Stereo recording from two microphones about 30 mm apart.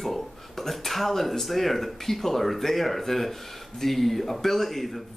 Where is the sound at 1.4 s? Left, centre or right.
Centre.